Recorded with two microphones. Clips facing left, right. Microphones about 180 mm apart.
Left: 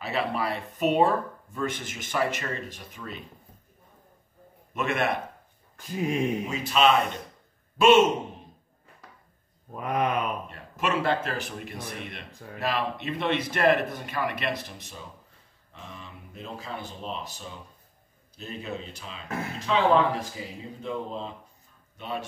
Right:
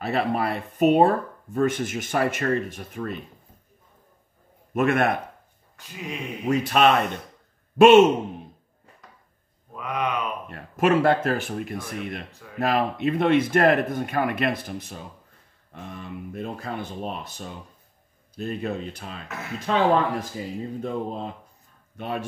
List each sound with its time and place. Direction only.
0.0 s speech: 50° right (ahead or behind)
4.7 s a man's voice: 55° right (ahead or behind)
6.0 s speech: 45° left (ahead or behind)
6.4 s a man's voice: 55° right (ahead or behind)
9.8 s speech: 45° left (ahead or behind)
10.5 s speech: 50° right (ahead or behind)